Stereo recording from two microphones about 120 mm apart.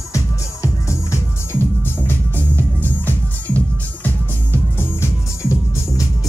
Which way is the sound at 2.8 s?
15° left (ahead or behind).